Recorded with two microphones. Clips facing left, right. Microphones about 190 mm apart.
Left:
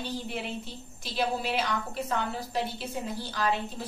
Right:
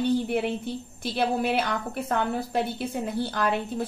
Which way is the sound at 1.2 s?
55° right (ahead or behind).